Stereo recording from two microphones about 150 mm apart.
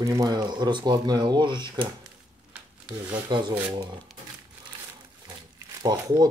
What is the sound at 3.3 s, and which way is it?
Speech, 30° right (ahead or behind).